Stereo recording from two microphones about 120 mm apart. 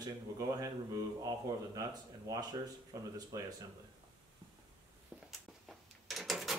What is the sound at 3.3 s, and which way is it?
Speech, 30° right (ahead or behind).